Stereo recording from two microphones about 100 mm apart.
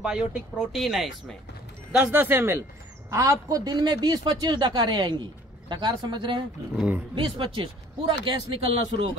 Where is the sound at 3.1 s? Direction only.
30° right (ahead or behind); by 8.3 s 55° right (ahead or behind).